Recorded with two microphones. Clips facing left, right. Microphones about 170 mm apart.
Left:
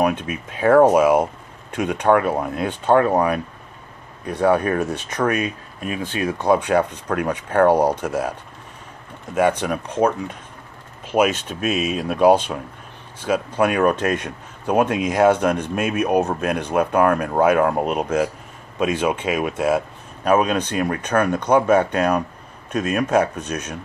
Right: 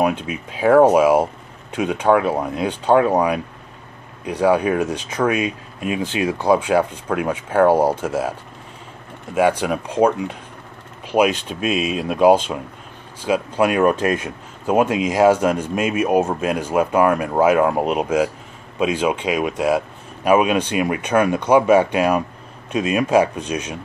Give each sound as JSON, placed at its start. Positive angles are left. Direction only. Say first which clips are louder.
{"t": 0.1, "sound": "speech", "louder": "even", "side_deg": 55}
{"t": 0.6, "sound": "speech", "louder": "right 1 dB", "side_deg": -5}
{"t": 2.6, "sound": "speech", "louder": "right 1 dB", "side_deg": -10}
{"t": 11.8, "sound": "speech", "louder": "right 1 dB", "side_deg": 45}
{"t": 12.1, "sound": "speech", "louder": "right 1 dB", "side_deg": -10}
{"t": 20.2, "sound": "speech", "louder": "right 2 dB", "side_deg": -10}